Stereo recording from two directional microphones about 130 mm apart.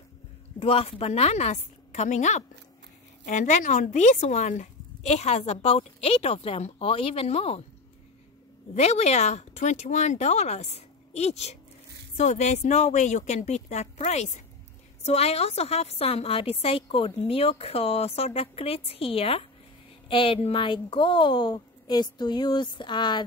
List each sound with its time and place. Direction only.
0.6 s speech: 50° left (ahead or behind)
8.7 s a woman's voice: 55° left (ahead or behind); by 23.2 s 35° left (ahead or behind)